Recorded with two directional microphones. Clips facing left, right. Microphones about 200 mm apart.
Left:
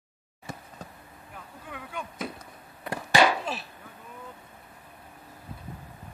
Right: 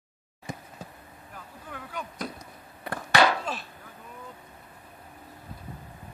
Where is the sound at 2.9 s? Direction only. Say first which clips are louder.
Even; 10° left (ahead or behind).